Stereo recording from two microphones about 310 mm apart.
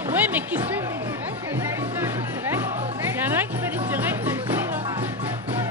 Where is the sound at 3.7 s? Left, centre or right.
Centre.